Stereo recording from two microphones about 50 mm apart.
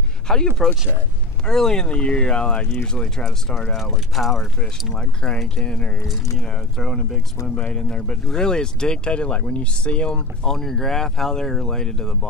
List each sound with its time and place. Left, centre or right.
0.3 s speech: centre
3.7 s speech: centre
4.9 s speech: centre